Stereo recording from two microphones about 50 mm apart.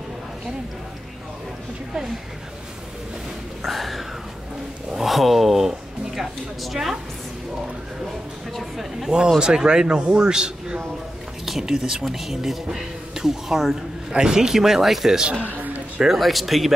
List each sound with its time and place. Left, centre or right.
3.6 s speech: centre
8.5 s speech: centre
9.4 s speech: centre
11.4 s speech: centre
15.4 s a sound: right
16.0 s speech: centre